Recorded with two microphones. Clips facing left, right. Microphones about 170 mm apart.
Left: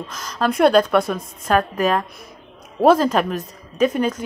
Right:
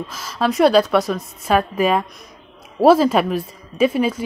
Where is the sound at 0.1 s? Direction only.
5° right (ahead or behind).